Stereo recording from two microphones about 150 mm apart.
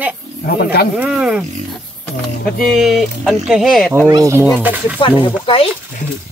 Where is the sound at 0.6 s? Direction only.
90° left.